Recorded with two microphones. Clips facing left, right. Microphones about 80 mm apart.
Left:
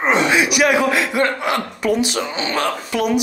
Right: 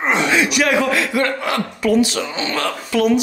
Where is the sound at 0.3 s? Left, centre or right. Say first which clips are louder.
Left 1 dB; centre.